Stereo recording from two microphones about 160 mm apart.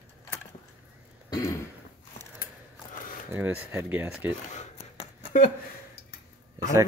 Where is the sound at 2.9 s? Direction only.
60° left (ahead or behind).